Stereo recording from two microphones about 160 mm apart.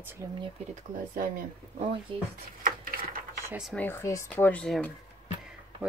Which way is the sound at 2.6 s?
60° right (ahead or behind).